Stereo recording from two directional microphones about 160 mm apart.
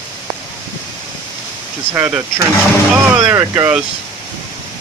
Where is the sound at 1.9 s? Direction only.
15° right (ahead or behind).